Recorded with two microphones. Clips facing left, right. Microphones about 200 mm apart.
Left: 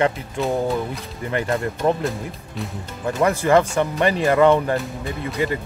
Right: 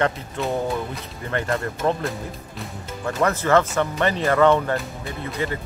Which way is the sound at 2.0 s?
Centre (ahead or behind).